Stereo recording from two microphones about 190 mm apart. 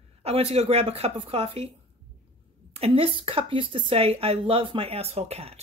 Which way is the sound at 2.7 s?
30° right (ahead or behind).